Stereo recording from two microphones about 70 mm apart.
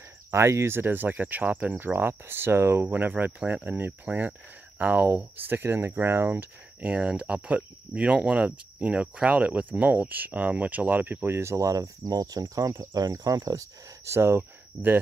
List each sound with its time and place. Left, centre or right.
0.3 s speech: right
11.5 s speech: right
14.0 s speech: right